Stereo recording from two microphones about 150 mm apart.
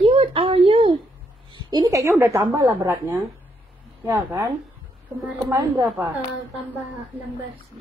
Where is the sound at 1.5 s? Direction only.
25° right (ahead or behind).